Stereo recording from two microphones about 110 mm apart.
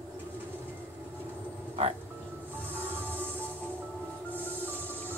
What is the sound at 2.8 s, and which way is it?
Music, 15° right (ahead or behind).